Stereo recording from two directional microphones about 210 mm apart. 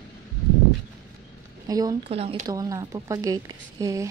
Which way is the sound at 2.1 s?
30° right (ahead or behind).